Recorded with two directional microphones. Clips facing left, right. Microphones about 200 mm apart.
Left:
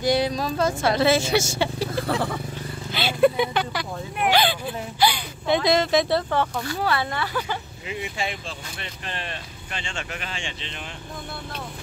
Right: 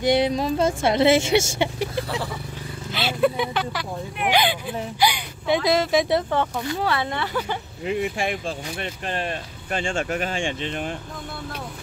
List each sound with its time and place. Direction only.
0.0 s speech: 25° right (ahead or behind)
1.6 s vehicle: 20° right (ahead or behind)
2.9 s speech: centre (ahead or behind)
4.3 s speech: 15° right (ahead or behind)
7.8 s speech: 55° right (ahead or behind)